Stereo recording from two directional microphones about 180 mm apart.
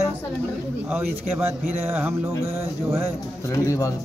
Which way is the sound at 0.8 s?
10° right (ahead or behind).